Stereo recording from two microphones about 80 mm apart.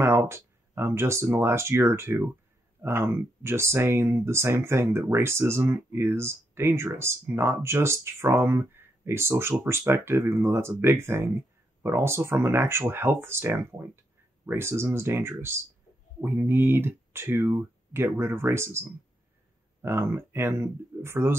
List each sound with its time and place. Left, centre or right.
0.3 s speech: right